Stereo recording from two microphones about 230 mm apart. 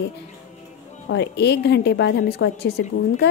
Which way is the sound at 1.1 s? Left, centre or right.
Left.